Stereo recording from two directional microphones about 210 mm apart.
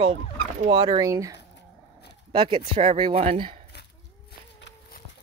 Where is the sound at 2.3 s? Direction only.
25° right (ahead or behind).